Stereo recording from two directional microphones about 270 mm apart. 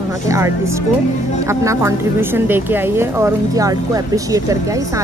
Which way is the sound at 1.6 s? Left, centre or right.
Centre.